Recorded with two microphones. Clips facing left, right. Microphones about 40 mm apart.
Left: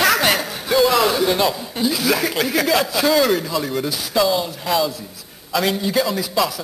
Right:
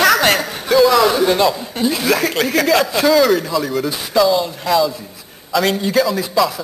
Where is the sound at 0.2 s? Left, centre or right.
Centre.